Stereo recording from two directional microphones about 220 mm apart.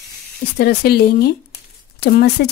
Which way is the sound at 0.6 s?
45° left (ahead or behind).